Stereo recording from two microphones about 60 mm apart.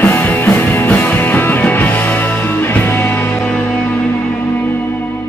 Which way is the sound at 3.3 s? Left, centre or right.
Centre.